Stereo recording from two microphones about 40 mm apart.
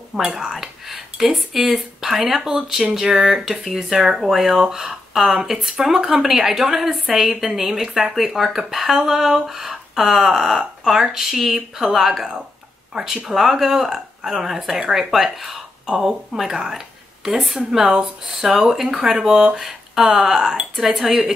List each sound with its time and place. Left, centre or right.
0.2 s speech: centre